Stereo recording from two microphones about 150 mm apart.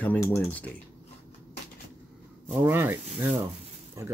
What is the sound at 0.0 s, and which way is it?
Speech, 10° left (ahead or behind).